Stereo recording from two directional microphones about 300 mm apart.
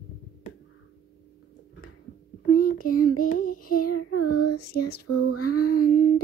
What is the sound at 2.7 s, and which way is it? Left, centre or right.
Child singing, left.